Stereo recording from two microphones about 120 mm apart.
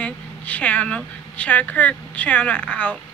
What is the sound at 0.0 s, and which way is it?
Speech, 10° left (ahead or behind).